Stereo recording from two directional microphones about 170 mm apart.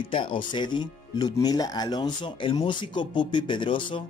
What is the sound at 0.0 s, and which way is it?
Speech, 30° left (ahead or behind).